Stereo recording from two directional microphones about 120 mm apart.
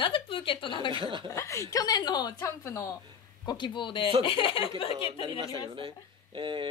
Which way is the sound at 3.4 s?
40° left (ahead or behind).